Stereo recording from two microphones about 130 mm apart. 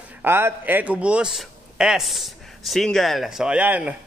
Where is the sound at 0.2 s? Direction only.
20° right (ahead or behind).